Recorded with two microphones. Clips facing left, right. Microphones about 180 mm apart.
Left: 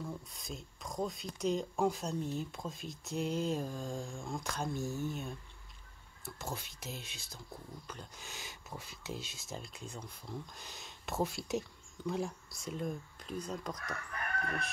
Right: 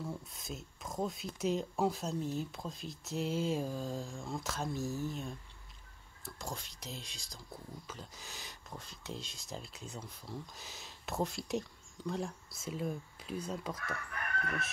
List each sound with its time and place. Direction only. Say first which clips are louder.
0.3 s speech: right 1 dB; centre (ahead or behind)